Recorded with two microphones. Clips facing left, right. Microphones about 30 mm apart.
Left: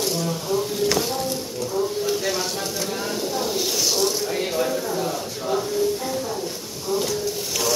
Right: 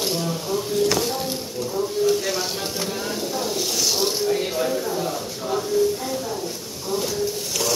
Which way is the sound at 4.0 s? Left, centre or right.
Right.